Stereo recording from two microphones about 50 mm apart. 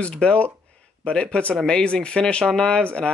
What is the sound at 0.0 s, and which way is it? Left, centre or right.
Speech, centre.